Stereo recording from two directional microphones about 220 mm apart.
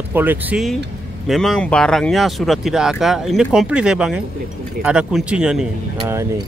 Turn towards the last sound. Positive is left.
turn(degrees=-10)  # may be behind; listen again after turning